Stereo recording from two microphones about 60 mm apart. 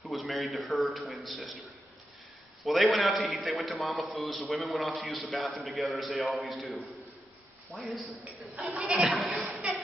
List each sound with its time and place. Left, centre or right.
0.0 s a man's voice: centre
2.6 s a man's voice: centre
8.5 s speech: centre
9.0 s a man's voice: centre
9.5 s a sound: centre